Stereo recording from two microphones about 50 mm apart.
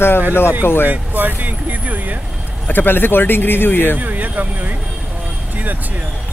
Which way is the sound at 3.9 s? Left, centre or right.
Right.